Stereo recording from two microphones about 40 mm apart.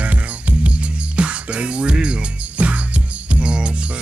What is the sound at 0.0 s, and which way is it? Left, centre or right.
Music, right.